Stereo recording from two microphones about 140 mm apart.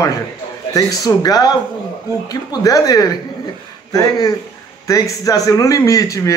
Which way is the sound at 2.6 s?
25° left (ahead or behind).